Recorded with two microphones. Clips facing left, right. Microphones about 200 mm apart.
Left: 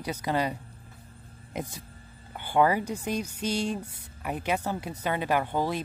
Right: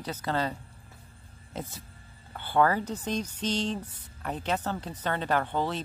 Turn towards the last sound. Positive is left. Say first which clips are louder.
# left 1 dB
turn(degrees=10)  # may be behind; listen again after turning